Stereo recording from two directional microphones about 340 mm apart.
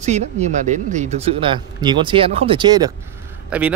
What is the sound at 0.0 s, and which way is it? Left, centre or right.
Speech, centre.